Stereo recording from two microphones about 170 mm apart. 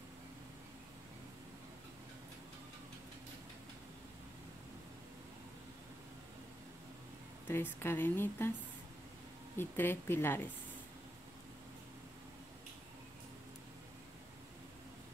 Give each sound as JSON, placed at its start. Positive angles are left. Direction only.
{"t": 7.4, "sound": "a woman's voice", "side_deg": 15}
{"t": 9.6, "sound": "a woman's voice", "side_deg": 15}